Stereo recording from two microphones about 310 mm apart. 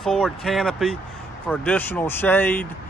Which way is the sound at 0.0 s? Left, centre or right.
Centre.